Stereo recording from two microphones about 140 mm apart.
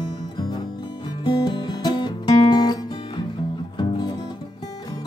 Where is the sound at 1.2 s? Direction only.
30° left (ahead or behind).